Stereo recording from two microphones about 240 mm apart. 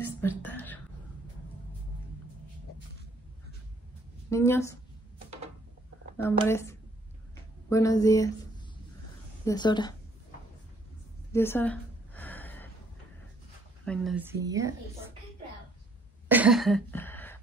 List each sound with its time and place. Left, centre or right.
0.2 s a sound: centre
4.3 s speech: centre
6.1 s speech: centre
9.5 s speech: centre
11.3 s a sound: centre
13.8 s speech: centre
16.3 s cough: centre